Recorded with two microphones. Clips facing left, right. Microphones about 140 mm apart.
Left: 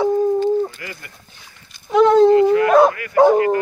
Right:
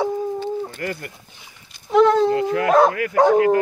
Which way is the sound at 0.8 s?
50° right (ahead or behind).